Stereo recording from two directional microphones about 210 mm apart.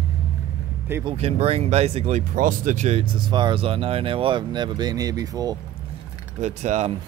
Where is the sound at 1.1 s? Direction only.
30° right (ahead or behind).